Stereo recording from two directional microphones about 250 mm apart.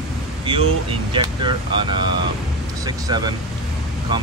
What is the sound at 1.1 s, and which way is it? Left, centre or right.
Speech, centre.